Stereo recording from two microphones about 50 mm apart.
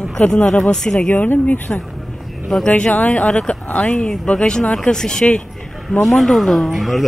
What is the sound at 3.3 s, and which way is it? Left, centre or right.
Speech, centre.